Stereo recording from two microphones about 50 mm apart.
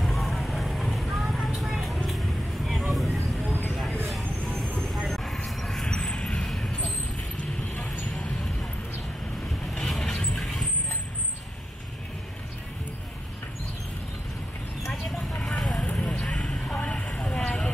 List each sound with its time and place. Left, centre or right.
0.0 s vehicle: centre
0.9 s a sound: centre
2.0 s vehicle: centre
4.6 s vehicle: centre
5.6 s a sound: centre
5.9 s vehicle: centre
9.7 s vehicle: centre
15.3 s vehicle: left